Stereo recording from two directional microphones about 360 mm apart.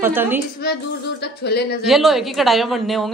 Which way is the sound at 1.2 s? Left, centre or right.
Left.